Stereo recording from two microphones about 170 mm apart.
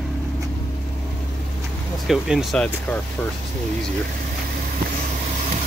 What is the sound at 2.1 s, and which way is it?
Speech, centre (ahead or behind).